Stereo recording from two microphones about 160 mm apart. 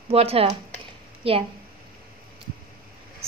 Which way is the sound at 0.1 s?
40° right (ahead or behind).